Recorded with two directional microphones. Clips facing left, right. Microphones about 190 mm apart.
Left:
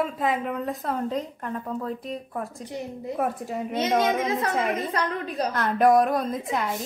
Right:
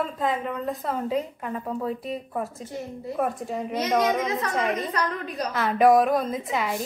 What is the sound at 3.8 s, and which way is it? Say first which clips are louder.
Speech: even; 25° left (ahead or behind).